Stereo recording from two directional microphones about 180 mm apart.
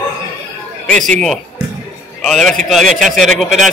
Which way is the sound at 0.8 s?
5° left (ahead or behind).